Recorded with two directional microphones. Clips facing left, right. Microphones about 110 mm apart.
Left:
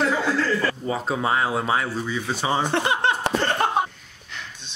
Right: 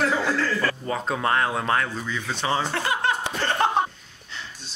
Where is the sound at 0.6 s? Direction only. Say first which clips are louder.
Left 1 dB; 5° left (ahead or behind); by 3.2 s 20° left (ahead or behind).